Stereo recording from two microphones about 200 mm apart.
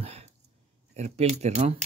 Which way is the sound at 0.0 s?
30° right (ahead or behind).